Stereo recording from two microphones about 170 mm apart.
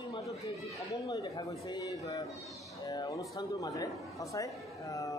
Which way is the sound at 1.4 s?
20° left (ahead or behind).